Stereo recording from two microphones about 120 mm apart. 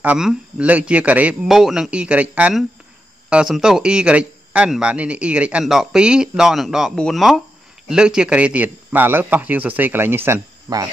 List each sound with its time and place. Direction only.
0.0 s speech: 10° right (ahead or behind); by 10.8 s 25° right (ahead or behind)